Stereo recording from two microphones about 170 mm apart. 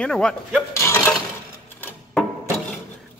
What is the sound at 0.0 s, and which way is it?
Speech, 5° left (ahead or behind).